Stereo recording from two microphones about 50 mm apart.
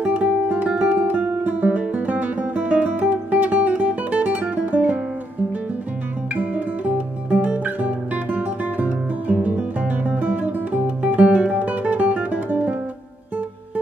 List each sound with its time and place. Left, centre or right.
0.0 s music: right
6.3 s music: right